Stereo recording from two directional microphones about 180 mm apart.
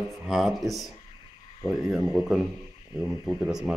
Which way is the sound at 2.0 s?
20° right (ahead or behind).